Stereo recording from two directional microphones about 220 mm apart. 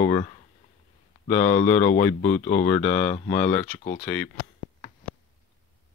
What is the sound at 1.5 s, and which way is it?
Speech, 35° left (ahead or behind).